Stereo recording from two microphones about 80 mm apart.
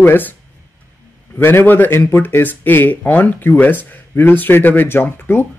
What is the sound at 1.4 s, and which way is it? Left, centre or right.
Speech, left.